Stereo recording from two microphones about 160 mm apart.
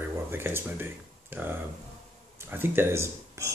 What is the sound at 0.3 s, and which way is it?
Speech, 15° right (ahead or behind).